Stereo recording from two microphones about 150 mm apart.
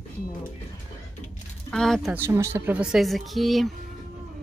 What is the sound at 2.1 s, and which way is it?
Speech, 15° right (ahead or behind).